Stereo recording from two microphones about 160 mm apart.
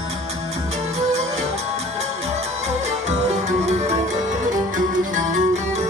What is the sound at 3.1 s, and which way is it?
Music, 45° right (ahead or behind).